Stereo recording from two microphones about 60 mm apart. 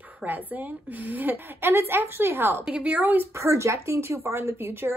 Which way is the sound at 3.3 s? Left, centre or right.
Right.